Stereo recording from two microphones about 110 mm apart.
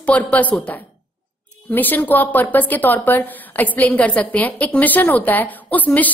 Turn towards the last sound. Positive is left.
turn(degrees=15)  # may be behind; listen again after turning